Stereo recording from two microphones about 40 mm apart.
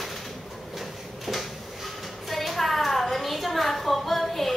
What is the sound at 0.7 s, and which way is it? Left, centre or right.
Drawer open or close, centre.